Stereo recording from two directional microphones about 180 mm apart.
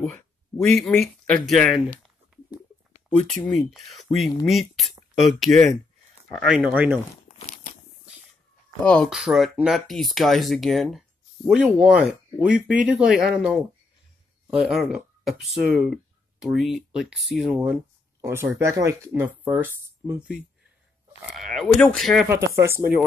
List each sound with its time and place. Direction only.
0.0 s a sound: centre (ahead or behind)
3.3 s speech: centre (ahead or behind)
7.2 s crumpling: 45° left (ahead or behind)
8.8 s speech: 5° left (ahead or behind)
22.3 s speech: 15° right (ahead or behind)